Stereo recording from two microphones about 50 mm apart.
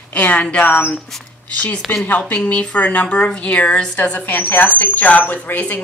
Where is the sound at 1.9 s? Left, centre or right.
Left.